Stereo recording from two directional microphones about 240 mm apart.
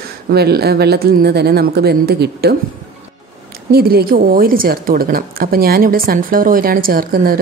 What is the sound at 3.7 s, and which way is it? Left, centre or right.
Speech, right.